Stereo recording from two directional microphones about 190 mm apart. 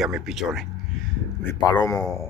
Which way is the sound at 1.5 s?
20° left (ahead or behind).